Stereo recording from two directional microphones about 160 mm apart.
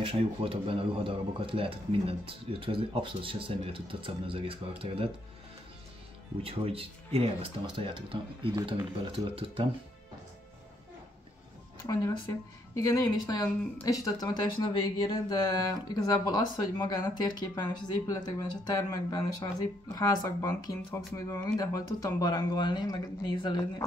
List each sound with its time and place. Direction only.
0.0 s a man's voice: 35° right (ahead or behind)
6.4 s a man's voice: 35° right (ahead or behind)
11.9 s speech: 20° left (ahead or behind)